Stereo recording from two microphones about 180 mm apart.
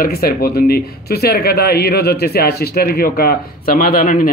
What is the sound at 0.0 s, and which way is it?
Speech, 60° left (ahead or behind).